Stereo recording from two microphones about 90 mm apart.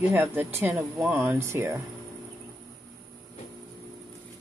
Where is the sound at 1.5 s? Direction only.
30° right (ahead or behind).